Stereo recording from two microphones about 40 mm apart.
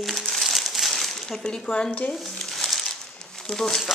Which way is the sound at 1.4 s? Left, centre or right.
Left.